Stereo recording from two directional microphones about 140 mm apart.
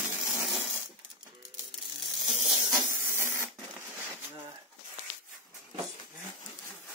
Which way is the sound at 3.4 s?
15° right (ahead or behind).